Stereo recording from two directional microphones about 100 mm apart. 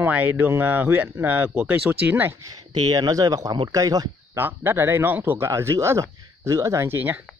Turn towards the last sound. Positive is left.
turn(degrees=-20)  # may be behind; listen again after turning